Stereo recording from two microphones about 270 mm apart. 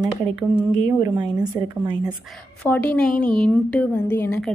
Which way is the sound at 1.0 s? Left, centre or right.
Centre.